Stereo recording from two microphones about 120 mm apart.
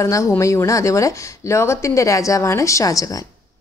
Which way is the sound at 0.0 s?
25° left (ahead or behind).